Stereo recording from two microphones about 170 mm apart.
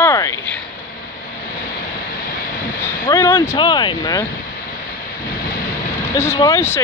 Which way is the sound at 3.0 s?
15° left (ahead or behind).